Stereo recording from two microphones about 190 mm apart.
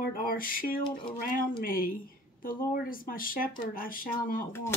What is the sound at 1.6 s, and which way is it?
Speech, 50° left (ahead or behind).